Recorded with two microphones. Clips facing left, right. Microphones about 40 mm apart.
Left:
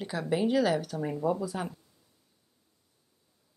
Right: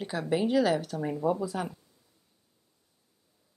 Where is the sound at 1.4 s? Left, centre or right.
Right.